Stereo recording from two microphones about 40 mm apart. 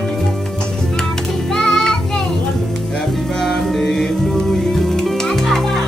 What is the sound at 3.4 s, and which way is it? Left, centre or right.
Music, centre.